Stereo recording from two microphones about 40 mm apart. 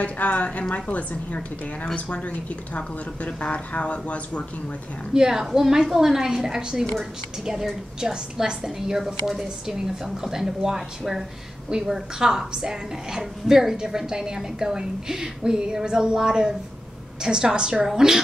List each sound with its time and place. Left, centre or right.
0.0 s a woman's voice: left
5.1 s a woman's voice: centre